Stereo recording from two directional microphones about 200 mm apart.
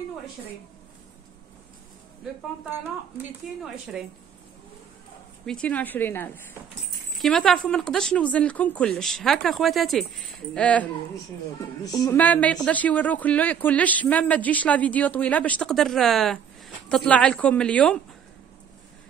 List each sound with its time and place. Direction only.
3.5 s speech: centre (ahead or behind)
5.4 s speech: 5° left (ahead or behind)
11.8 s a woman's voice: 20° left (ahead or behind)
12.2 s speech: 5° left (ahead or behind)